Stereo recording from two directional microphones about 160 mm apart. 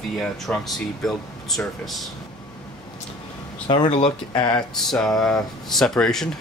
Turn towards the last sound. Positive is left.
turn(degrees=5)  # may be behind; listen again after turning